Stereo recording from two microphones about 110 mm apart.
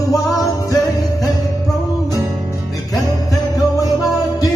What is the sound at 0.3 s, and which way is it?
Music, 30° left (ahead or behind).